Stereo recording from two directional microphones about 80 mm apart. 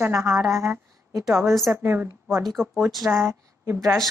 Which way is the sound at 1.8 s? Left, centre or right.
Right.